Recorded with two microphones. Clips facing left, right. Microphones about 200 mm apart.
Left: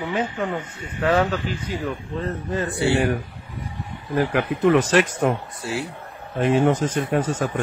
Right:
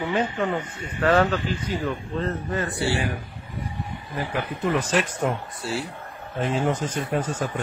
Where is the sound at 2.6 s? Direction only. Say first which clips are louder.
Left 5 dB; 20° left (ahead or behind).